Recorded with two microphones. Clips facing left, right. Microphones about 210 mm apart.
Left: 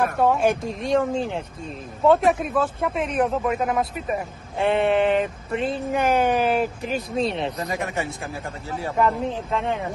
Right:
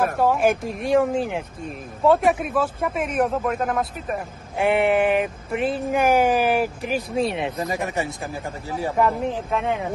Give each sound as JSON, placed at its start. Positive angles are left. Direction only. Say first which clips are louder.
{"t": 0.0, "sound": "speech", "louder": "even", "side_deg": 0}
{"t": 4.6, "sound": "speech", "louder": "right 1 dB", "side_deg": -15}
{"t": 7.6, "sound": "speech", "louder": "right 2 dB", "side_deg": -15}